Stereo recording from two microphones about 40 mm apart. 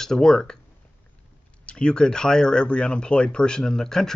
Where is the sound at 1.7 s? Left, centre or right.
Left.